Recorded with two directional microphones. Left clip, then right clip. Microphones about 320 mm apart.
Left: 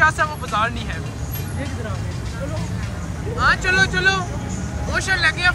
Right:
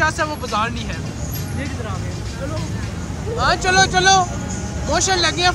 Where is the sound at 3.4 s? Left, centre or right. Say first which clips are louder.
Right 1 dB; centre.